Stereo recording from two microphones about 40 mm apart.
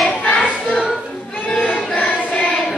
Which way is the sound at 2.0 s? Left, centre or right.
Left.